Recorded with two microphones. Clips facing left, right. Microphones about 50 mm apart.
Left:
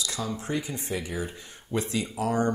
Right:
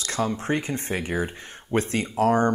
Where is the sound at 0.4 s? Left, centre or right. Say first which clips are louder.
Right 5 dB; right.